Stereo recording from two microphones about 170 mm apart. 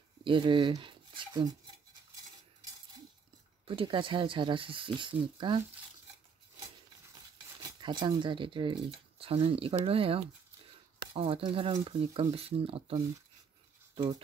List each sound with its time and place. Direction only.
0.2 s speech: 30° right (ahead or behind)
3.6 s speech: 30° right (ahead or behind)
7.6 s speech: 25° right (ahead or behind)